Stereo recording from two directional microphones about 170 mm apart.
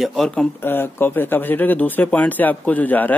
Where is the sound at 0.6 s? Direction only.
15° left (ahead or behind).